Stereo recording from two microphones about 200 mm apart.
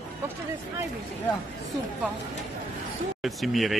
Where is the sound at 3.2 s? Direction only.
Centre (ahead or behind).